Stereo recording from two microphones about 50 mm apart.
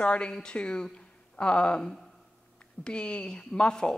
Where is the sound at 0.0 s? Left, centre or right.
Left.